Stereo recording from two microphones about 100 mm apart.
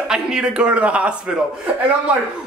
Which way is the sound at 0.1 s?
10° right (ahead or behind).